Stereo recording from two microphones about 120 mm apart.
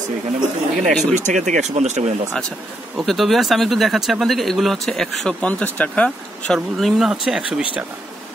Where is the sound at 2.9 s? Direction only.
Centre (ahead or behind).